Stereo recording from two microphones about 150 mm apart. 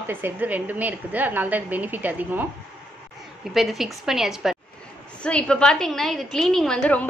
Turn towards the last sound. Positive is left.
turn(degrees=5)  # may be behind; listen again after turning